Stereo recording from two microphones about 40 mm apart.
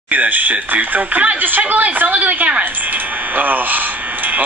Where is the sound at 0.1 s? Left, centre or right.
Right.